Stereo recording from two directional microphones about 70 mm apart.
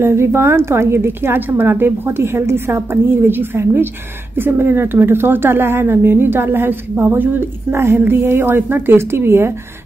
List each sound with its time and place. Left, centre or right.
0.0 s a woman's voice: right